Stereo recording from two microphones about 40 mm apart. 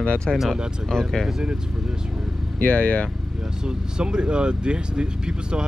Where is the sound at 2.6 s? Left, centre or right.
Left.